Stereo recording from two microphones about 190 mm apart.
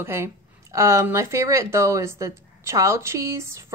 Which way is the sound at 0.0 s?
15° right (ahead or behind).